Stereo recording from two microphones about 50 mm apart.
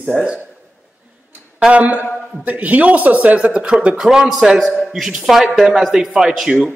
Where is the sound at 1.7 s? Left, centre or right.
Right.